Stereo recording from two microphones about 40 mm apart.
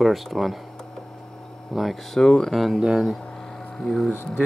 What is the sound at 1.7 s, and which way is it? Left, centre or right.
Speech, centre.